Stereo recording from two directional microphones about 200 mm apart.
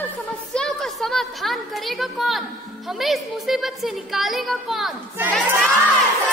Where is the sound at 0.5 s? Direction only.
Centre (ahead or behind).